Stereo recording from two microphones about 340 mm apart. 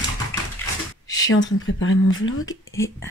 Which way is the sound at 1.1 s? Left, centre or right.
Left.